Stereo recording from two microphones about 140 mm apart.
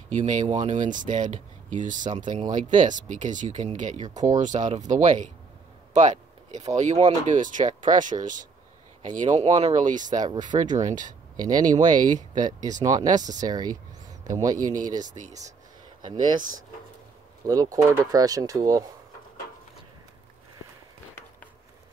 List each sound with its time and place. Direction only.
0.1 s speech: 60° right (ahead or behind)
10.0 s speech: 30° right (ahead or behind)
10.7 s speech: 60° right (ahead or behind)
11.4 s speech: 25° right (ahead or behind)
16.0 s speech: 30° right (ahead or behind)